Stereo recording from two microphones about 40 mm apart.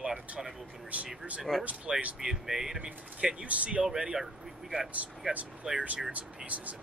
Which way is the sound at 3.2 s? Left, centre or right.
Right.